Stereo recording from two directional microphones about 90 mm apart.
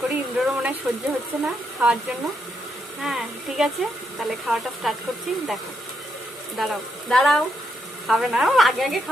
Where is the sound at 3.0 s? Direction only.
5° right (ahead or behind).